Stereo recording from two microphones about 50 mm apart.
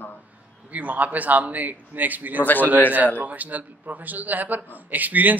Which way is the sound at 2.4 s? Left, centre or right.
Left.